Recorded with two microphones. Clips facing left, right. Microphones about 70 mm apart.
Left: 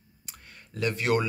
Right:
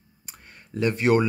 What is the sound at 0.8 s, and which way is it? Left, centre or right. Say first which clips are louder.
Speech: right 5 dB; right.